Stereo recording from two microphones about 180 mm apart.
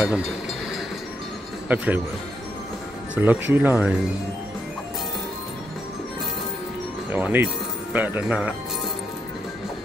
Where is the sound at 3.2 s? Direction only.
10° right (ahead or behind).